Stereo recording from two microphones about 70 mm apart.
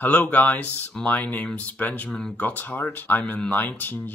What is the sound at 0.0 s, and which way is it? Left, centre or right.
Speech, left.